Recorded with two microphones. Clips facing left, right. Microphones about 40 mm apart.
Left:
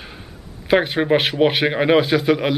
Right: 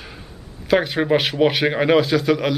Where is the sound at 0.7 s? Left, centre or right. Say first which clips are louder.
Left 1 dB; centre.